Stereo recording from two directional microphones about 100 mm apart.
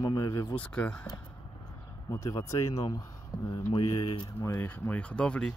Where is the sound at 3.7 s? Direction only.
65° left (ahead or behind).